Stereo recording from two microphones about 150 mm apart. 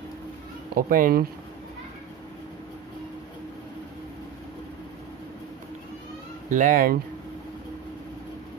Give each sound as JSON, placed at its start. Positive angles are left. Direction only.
{"t": 0.7, "sound": "speech", "side_deg": -70}
{"t": 6.5, "sound": "speech", "side_deg": -65}